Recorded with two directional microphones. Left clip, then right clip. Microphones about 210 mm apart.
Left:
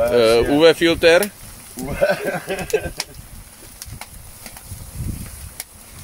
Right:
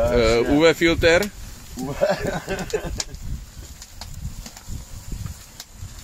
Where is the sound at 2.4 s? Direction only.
Centre (ahead or behind).